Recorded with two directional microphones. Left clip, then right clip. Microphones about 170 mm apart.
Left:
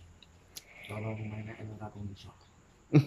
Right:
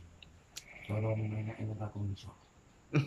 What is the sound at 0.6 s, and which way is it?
Insect, 30° left (ahead or behind).